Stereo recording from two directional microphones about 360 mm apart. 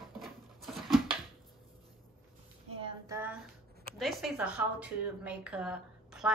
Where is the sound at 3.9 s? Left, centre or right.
Centre.